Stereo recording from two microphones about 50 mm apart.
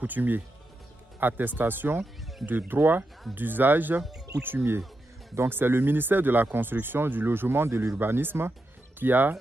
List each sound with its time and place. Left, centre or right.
0.0 s speech: right